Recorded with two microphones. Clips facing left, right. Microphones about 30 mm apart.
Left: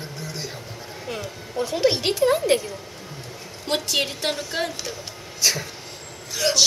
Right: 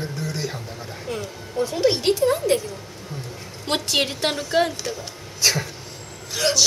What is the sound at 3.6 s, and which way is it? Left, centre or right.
Speech, centre.